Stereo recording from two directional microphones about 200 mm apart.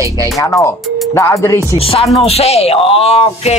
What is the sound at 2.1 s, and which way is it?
Speech, 30° left (ahead or behind).